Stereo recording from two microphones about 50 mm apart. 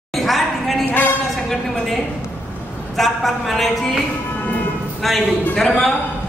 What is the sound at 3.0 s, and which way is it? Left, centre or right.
A woman's voice, centre.